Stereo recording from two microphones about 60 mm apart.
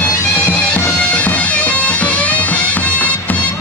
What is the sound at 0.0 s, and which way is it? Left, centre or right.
Bagpipes, left.